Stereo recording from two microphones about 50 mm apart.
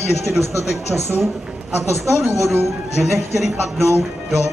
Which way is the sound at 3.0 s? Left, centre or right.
Centre.